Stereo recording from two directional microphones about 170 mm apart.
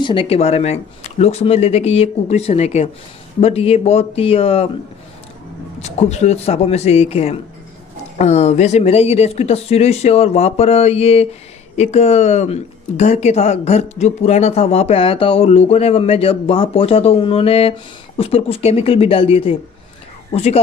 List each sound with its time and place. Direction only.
0.0 s speech: 30° left (ahead or behind)
5.8 s speech: 40° left (ahead or behind)